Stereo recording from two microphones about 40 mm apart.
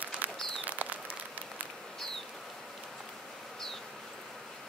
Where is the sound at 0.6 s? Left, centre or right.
Right.